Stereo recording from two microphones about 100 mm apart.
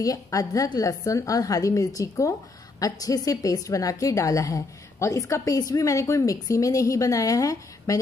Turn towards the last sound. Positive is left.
turn(degrees=35)  # may be behind; listen again after turning